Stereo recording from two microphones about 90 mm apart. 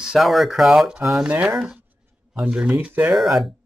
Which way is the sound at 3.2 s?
5° right (ahead or behind).